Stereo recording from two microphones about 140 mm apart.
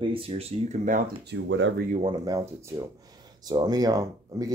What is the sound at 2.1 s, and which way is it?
Speech, 25° right (ahead or behind).